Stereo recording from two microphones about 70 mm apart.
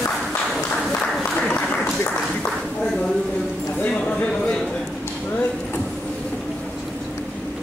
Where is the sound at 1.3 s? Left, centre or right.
Centre.